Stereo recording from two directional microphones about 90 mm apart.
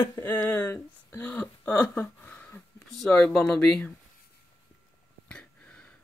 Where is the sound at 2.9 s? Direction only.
5° left (ahead or behind).